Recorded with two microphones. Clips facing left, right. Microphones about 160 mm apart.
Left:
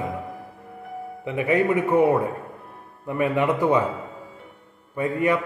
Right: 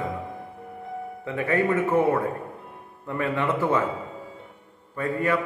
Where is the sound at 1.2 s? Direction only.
15° left (ahead or behind).